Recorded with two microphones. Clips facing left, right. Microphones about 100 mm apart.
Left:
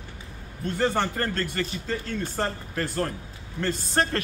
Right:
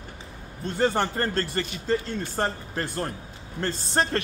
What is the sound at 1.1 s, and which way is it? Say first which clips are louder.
A man's voice: right 1 dB; 30° right (ahead or behind).